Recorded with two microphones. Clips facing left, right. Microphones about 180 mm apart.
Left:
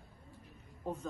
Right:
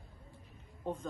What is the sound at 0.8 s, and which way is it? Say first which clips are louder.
Speech: right 1 dB; 5° left (ahead or behind).